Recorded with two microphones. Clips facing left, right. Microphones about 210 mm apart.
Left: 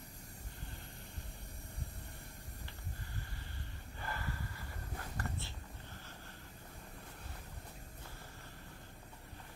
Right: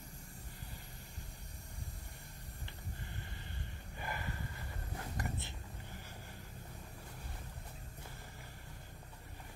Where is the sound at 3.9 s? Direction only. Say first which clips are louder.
Even; 15° right (ahead or behind).